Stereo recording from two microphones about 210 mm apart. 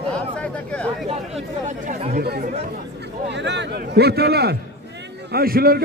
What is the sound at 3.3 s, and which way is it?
A man's voice, 55° right (ahead or behind).